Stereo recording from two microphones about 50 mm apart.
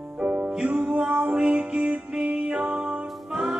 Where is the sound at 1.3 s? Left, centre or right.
Right.